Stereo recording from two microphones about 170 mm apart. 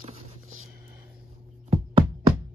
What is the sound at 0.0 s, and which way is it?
Music, 35° right (ahead or behind).